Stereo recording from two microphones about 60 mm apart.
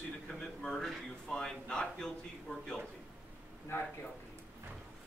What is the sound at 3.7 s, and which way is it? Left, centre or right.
Speech, left.